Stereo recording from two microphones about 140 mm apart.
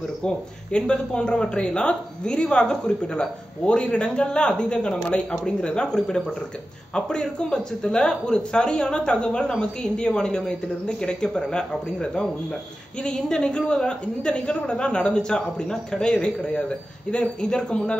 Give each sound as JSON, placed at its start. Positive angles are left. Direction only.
{"t": 0.2, "sound": "speech", "side_deg": 5}